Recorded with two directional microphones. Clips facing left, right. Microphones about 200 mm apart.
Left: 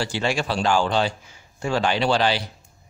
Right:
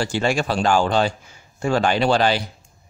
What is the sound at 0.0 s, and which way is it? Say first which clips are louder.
Speech: right 3 dB; 45° right (ahead or behind).